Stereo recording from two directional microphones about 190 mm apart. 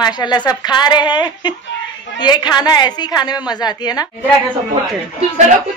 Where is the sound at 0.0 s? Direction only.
20° left (ahead or behind).